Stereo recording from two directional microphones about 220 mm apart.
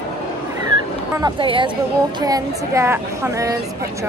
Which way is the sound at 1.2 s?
20° right (ahead or behind).